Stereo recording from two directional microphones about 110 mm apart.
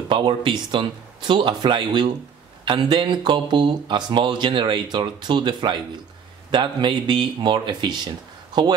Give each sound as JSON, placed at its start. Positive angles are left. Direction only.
{"t": 0.1, "sound": "speech", "side_deg": -45}